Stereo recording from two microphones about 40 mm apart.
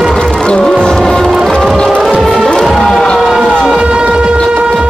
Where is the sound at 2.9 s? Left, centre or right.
Left.